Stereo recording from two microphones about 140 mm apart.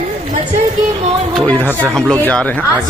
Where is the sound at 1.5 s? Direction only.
10° left (ahead or behind).